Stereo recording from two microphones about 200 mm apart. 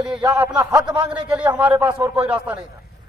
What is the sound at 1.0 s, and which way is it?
Speech, 5° right (ahead or behind).